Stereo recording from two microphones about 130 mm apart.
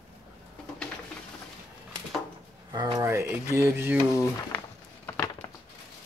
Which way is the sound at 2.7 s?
30° right (ahead or behind).